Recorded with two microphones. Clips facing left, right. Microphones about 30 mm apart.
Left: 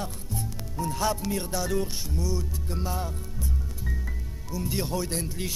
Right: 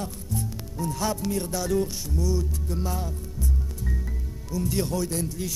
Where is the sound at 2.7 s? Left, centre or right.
Left.